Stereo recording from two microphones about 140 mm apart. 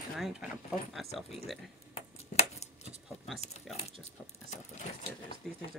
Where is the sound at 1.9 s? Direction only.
50° left (ahead or behind).